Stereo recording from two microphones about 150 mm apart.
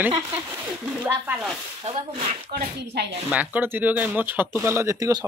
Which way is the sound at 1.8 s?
40° right (ahead or behind).